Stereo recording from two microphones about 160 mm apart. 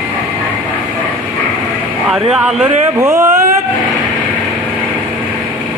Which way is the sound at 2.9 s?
20° right (ahead or behind).